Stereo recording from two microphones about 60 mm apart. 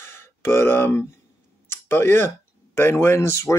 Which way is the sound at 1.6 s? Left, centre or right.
Left.